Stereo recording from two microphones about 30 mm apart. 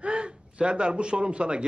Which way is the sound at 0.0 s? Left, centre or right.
Right.